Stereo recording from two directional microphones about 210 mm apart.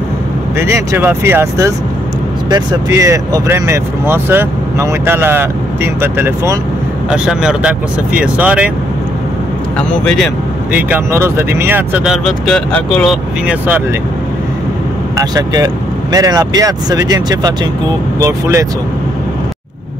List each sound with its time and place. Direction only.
0.6 s speech: 10° right (ahead or behind)
9.8 s speech: 5° left (ahead or behind)
10.8 s speech: 10° right (ahead or behind)
15.1 s speech: 15° right (ahead or behind)